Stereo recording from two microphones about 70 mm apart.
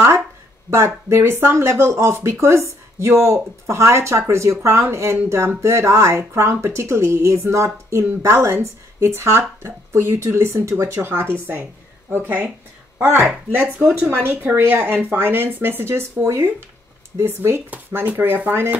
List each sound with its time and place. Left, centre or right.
0.7 s speech: right
13.7 s speech: centre; by 17.6 s right
17.6 s speech: right